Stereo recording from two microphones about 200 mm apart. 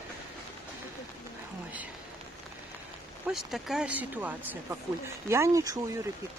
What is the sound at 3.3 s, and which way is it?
Speech, centre (ahead or behind).